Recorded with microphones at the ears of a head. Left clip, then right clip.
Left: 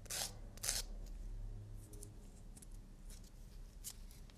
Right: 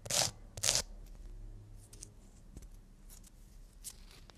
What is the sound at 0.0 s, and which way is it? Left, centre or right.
Scissors, right.